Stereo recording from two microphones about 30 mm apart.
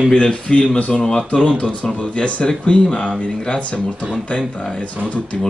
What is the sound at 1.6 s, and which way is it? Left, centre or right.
Speech, left.